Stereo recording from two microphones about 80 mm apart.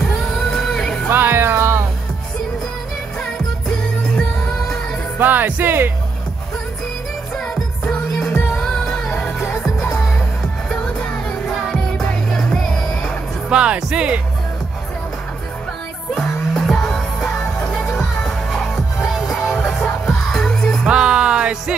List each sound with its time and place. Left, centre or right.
0.0 s music: centre
1.1 s music: right
5.2 s speech: right
7.3 s music: centre
13.5 s speech: centre
16.2 s music: centre
20.8 s music: centre